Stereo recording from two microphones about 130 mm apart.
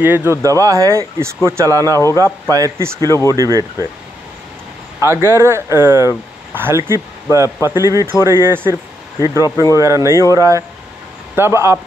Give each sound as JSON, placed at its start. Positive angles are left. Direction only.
{"t": 0.0, "sound": "speech", "side_deg": -15}
{"t": 5.0, "sound": "speech", "side_deg": -20}